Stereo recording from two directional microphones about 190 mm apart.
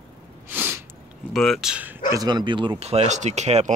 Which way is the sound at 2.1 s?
20° right (ahead or behind).